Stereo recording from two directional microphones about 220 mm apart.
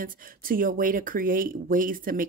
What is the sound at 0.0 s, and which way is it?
Speech, 40° right (ahead or behind).